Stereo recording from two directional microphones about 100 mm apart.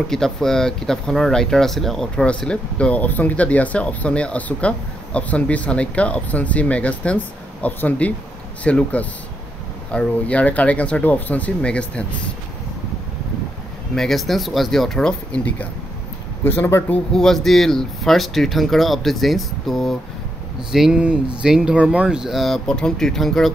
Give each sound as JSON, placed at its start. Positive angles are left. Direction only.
{"t": 0.1, "sound": "speech", "side_deg": 5}
{"t": 13.9, "sound": "speech", "side_deg": 0}
{"t": 16.4, "sound": "speech", "side_deg": 20}
{"t": 17.1, "sound": "speech", "side_deg": 5}